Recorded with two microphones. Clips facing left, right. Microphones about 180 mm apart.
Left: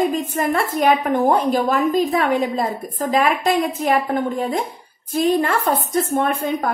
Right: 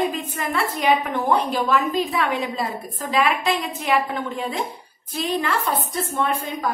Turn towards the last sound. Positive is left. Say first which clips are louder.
# left 5 dB
turn(degrees=55)  # may be behind; listen again after turning